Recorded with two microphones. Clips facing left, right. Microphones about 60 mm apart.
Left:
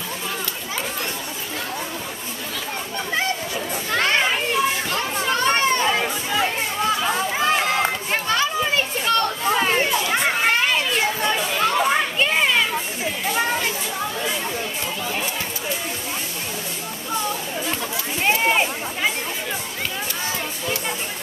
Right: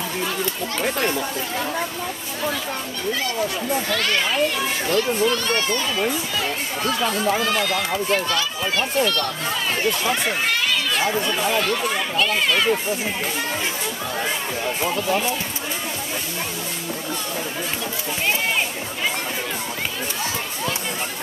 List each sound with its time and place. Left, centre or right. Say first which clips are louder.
3.9 s speech: left 5 dB; left
10.2 s a sound: left 3 dB; left
11.6 s speech: left 4 dB; left